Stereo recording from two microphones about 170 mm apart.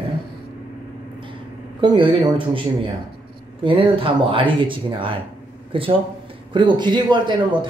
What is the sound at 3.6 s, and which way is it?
A man's voice, 30° right (ahead or behind).